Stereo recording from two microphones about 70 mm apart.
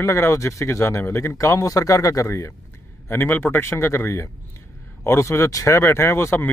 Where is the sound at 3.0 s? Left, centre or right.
Left.